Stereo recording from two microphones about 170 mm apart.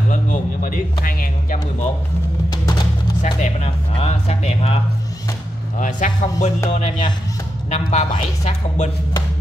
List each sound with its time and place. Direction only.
0.1 s speech: 50° left (ahead or behind)
3.2 s speech: 45° left (ahead or behind)
5.8 s music: 50° left (ahead or behind)
7.7 s speech: 40° left (ahead or behind)